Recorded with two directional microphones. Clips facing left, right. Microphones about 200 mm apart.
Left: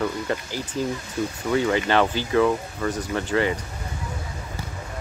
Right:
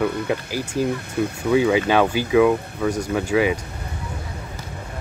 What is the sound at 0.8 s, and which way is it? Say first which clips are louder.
Speech: right 4 dB; 60° right (ahead or behind).